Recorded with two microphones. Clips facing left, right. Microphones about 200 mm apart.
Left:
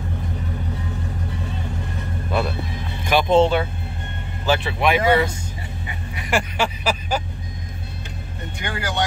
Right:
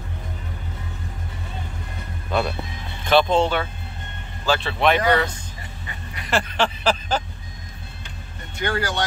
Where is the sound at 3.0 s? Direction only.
10° left (ahead or behind).